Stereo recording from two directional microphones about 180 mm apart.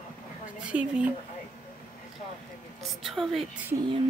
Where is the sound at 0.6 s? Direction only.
5° right (ahead or behind).